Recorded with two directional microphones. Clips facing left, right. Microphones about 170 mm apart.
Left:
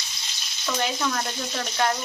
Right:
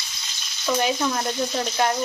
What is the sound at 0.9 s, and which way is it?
Speech, 20° right (ahead or behind).